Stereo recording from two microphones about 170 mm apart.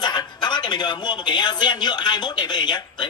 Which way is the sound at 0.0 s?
25° left (ahead or behind).